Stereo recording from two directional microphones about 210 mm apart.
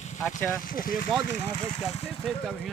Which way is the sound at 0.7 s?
40° left (ahead or behind).